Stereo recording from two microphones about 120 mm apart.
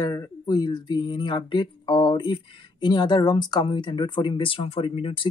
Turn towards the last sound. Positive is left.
turn(degrees=50)  # may be behind; listen again after turning